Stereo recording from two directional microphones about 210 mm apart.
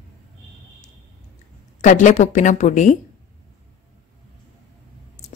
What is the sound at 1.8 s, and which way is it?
A woman's voice, 35° left (ahead or behind).